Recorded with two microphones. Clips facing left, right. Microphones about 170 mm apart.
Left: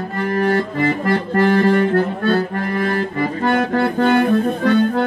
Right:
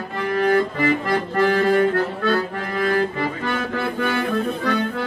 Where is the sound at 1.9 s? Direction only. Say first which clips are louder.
Left 4 dB; 55° left (ahead or behind).